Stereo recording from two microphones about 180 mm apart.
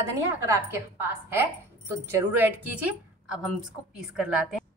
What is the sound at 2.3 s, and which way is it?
A woman's voice, 10° right (ahead or behind).